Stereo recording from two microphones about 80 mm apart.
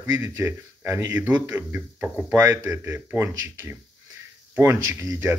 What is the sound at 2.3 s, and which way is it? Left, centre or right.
Speech, right.